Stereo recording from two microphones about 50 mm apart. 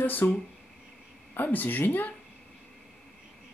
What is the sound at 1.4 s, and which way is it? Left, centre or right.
Speech, left.